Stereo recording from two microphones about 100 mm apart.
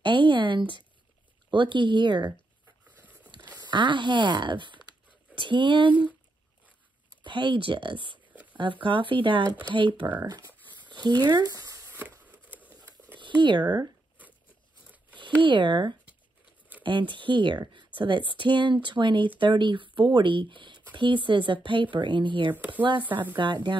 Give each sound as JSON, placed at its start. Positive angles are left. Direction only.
{"t": 0.0, "sound": "a sound", "side_deg": -55}
{"t": 1.5, "sound": "speech", "side_deg": -55}
{"t": 3.5, "sound": "speech", "side_deg": -50}
{"t": 7.2, "sound": "speech", "side_deg": -50}
{"t": 10.9, "sound": "a sound", "side_deg": -45}
{"t": 11.2, "sound": "speech", "side_deg": -45}
{"t": 12.0, "sound": "a sound", "side_deg": -15}
{"t": 13.4, "sound": "speech", "side_deg": -50}
{"t": 15.4, "sound": "speech", "side_deg": -55}
{"t": 22.9, "sound": "speech", "side_deg": -20}
{"t": 23.3, "sound": "speech", "side_deg": -50}